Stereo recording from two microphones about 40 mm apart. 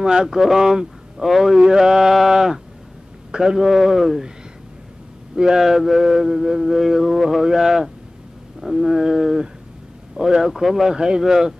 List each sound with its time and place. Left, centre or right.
0.0 s mantra: centre
0.6 s speech: centre
1.6 s mantra: centre
5.3 s speech: centre
5.6 s mantra: centre